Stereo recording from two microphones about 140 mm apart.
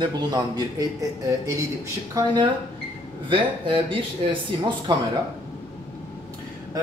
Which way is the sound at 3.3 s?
40° right (ahead or behind).